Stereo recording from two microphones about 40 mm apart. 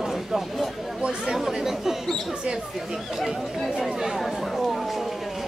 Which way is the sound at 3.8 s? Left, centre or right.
Centre.